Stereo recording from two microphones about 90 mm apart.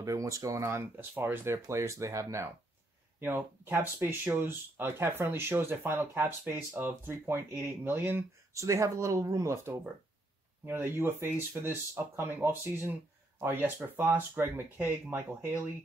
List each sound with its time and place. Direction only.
0.0 s speech: 35° right (ahead or behind)
3.2 s speech: 25° right (ahead or behind)